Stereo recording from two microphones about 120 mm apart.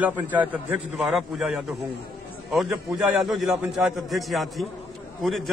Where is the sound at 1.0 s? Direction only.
Centre (ahead or behind).